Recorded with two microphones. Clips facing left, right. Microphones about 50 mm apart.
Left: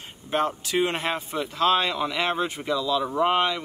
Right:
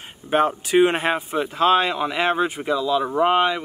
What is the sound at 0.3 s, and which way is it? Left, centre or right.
Speech, centre.